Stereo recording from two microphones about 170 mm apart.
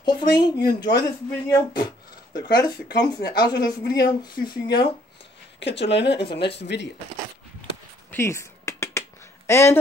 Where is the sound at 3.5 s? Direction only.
70° left (ahead or behind).